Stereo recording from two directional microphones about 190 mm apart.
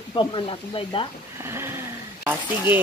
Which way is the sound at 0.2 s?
25° left (ahead or behind).